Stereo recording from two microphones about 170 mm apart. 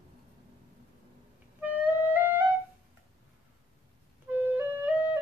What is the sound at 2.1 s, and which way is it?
Flute, 10° right (ahead or behind).